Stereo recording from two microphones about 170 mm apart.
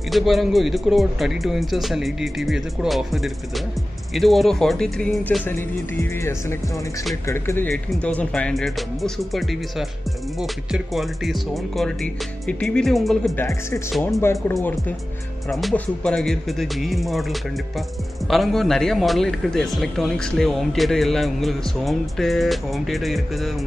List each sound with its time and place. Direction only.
0.1 s speech: centre (ahead or behind)
5.5 s music: 15° left (ahead or behind)
7.9 s speech: 5° left (ahead or behind)
13.4 s music: 15° left (ahead or behind)
15.5 s speech: 5° left (ahead or behind)